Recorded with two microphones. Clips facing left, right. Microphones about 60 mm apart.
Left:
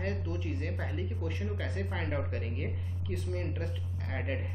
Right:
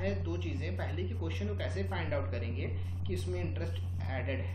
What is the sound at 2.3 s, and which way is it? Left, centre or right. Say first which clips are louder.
A woman's voice: left 2 dB; centre.